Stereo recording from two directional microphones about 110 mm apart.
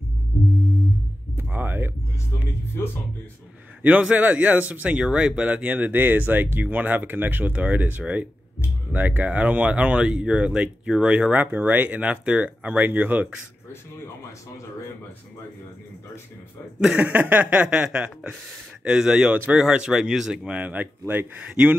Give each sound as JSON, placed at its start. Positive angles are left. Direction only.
{"t": 1.3, "sound": "a sound", "side_deg": -20}
{"t": 3.8, "sound": "speech", "side_deg": -15}
{"t": 16.8, "sound": "speech", "side_deg": -10}